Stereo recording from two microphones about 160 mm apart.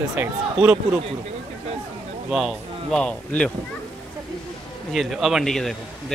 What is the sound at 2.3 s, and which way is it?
Speech, centre (ahead or behind).